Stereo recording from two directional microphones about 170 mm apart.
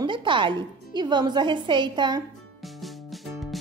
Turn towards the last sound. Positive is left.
turn(degrees=0)  # may be behind; listen again after turning